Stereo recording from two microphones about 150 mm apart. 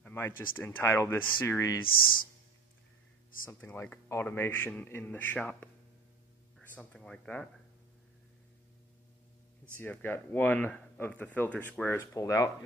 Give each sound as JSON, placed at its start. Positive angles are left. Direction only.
{"t": 0.0, "sound": "a sound", "side_deg": 15}
{"t": 0.6, "sound": "speech", "side_deg": 15}
{"t": 3.4, "sound": "speech", "side_deg": 15}
{"t": 6.7, "sound": "speech", "side_deg": 10}
{"t": 9.8, "sound": "speech", "side_deg": 15}